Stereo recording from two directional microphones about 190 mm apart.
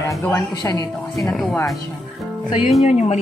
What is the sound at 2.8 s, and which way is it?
Speech, 35° left (ahead or behind).